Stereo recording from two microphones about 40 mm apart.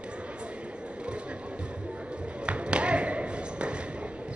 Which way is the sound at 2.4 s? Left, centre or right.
Right.